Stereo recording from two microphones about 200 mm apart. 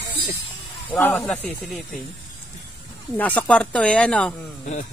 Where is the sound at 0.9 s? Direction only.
5° left (ahead or behind).